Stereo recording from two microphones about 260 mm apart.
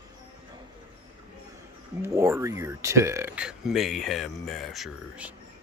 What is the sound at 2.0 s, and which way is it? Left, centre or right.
Speech, centre.